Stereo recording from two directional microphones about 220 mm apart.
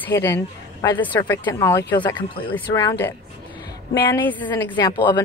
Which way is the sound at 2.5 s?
10° left (ahead or behind).